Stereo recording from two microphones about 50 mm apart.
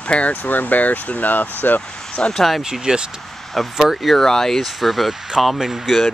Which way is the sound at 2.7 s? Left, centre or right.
Centre.